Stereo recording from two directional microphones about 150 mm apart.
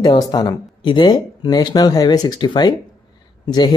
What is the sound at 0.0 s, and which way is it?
Speech, 25° left (ahead or behind).